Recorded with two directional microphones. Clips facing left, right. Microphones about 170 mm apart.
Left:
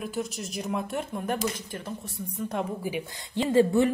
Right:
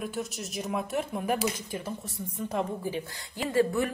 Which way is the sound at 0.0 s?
Centre (ahead or behind).